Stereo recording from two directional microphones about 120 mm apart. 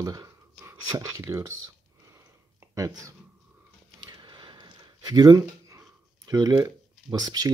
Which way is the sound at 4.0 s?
35° right (ahead or behind).